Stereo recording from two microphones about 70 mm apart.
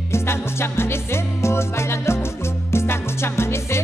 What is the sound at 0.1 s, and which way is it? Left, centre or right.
Music, left.